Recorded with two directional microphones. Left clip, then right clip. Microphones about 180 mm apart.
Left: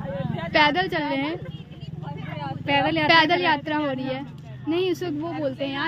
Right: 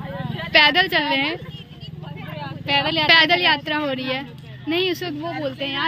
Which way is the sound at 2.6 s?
45° left (ahead or behind).